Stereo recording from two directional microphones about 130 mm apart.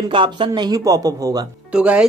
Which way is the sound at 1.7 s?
10° right (ahead or behind).